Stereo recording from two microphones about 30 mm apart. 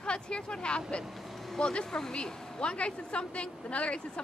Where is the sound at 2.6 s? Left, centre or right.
Left.